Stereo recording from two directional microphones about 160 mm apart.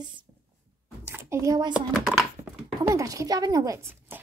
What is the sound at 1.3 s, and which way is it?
Speech, 20° right (ahead or behind).